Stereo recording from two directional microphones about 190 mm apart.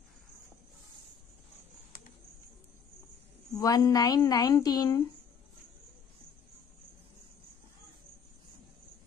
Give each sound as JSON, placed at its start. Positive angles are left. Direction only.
{"t": 3.5, "sound": "a woman's voice", "side_deg": 20}